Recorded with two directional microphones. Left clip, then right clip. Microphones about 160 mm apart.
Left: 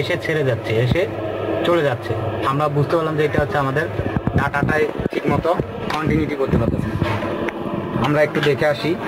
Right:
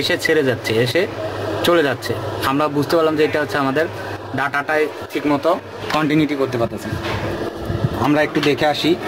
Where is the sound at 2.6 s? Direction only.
80° right.